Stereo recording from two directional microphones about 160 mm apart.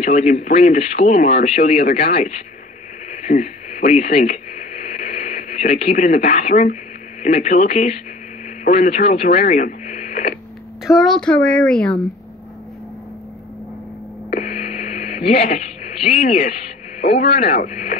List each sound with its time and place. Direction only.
0.0 s speech: 45° left (ahead or behind)
3.1 s radio: 50° left (ahead or behind)
7.2 s speech: 45° left (ahead or behind)
10.8 s a woman's voice: centre (ahead or behind)
14.3 s radio: 50° left (ahead or behind)
16.3 s speech: 40° left (ahead or behind)